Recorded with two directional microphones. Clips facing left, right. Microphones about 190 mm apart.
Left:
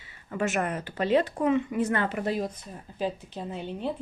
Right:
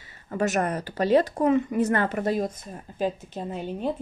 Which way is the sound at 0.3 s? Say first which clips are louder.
Right 3 dB; 40° right (ahead or behind).